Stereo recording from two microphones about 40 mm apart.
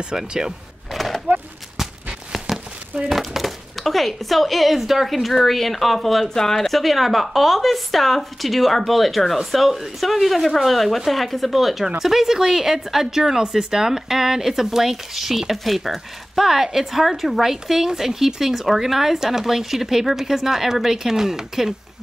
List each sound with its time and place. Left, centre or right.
0.0 s a woman's voice: centre
0.9 s skateboard: centre
2.5 s a sound: centre
3.1 s a woman's voice: centre
6.2 s a woman's voice: centre